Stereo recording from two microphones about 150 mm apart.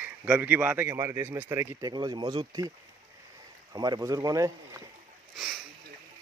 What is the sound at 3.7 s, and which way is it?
Speech, 25° right (ahead or behind).